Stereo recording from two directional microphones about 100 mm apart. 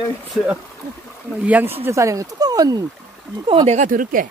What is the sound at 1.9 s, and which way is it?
Speech, 30° right (ahead or behind).